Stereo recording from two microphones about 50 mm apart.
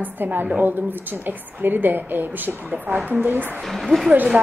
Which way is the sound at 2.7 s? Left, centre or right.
Right.